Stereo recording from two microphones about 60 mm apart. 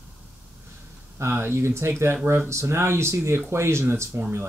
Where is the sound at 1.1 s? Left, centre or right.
Right.